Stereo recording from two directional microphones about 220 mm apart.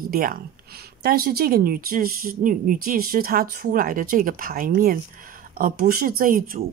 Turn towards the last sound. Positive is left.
turn(degrees=-40)  # may be behind; listen again after turning